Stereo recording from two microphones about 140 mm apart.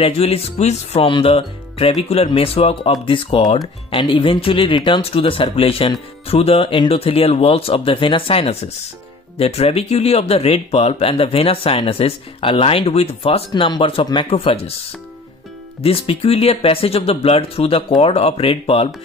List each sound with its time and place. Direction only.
0.0 s speech: 45° left (ahead or behind)
15.8 s speech: 40° left (ahead or behind)